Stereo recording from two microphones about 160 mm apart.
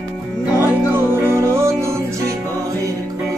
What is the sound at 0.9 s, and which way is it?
Music, 15° right (ahead or behind).